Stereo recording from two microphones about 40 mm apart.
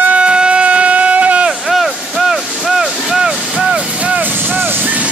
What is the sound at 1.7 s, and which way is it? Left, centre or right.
Vehicle, centre.